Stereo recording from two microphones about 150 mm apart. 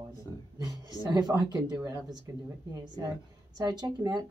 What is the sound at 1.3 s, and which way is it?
Speech, 25° right (ahead or behind).